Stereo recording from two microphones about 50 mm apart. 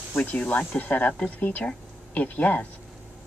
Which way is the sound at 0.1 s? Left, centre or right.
Left.